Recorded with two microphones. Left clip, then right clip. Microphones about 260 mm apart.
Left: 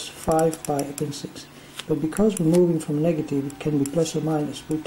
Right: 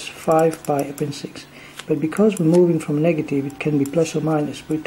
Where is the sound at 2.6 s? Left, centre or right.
Right.